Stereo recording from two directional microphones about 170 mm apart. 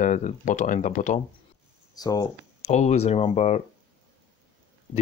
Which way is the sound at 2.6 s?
40° left (ahead or behind).